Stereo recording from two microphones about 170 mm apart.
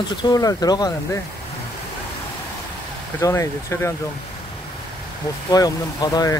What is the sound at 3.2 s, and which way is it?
Speech, 15° left (ahead or behind).